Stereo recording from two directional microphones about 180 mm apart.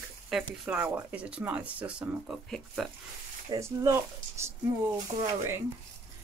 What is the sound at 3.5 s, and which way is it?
Speech, 20° right (ahead or behind).